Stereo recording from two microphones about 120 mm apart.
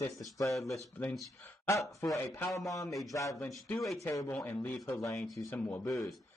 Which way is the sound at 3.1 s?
25° left (ahead or behind).